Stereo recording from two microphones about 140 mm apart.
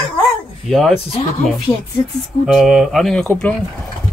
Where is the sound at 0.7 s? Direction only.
Centre (ahead or behind).